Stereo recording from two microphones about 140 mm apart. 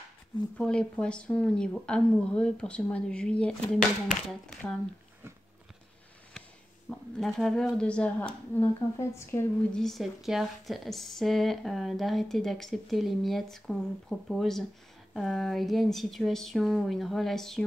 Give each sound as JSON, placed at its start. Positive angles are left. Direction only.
{"t": 0.6, "sound": "speech", "side_deg": 5}
{"t": 6.9, "sound": "speech", "side_deg": 0}
{"t": 9.7, "sound": "speech", "side_deg": 5}